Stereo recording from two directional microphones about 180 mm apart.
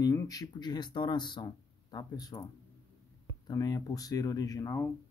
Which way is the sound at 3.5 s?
20° left (ahead or behind).